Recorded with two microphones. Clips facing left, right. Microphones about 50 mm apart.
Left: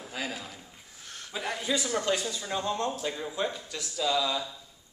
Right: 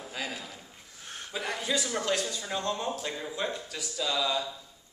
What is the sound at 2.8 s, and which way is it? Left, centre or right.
A man's voice, centre.